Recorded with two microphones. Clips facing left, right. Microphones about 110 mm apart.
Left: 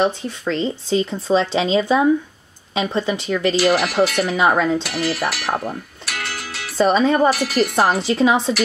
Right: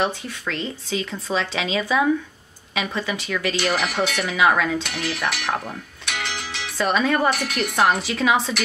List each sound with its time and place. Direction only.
0.0 s speech: 30° left (ahead or behind)
3.5 s speech: 5° left (ahead or behind)
4.4 s speech: 25° left (ahead or behind)
4.8 s music: centre (ahead or behind)
6.8 s speech: 30° left (ahead or behind)
7.2 s speech: centre (ahead or behind)
8.0 s speech: 30° left (ahead or behind)